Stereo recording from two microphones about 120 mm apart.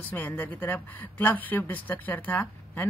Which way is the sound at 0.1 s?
15° left (ahead or behind).